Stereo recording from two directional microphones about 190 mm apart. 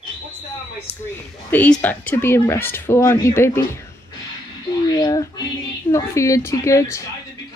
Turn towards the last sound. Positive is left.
turn(degrees=15)  # may be behind; listen again after turning